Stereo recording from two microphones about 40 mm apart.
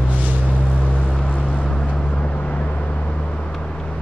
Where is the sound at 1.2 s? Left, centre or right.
Left.